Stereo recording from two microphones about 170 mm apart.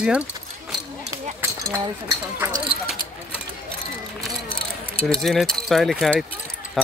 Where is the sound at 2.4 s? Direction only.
15° right (ahead or behind).